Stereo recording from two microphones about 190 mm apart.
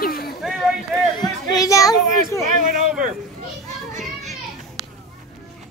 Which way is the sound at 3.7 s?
40° right (ahead or behind).